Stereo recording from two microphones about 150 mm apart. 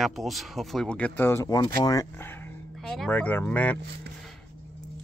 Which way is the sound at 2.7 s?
5° left (ahead or behind).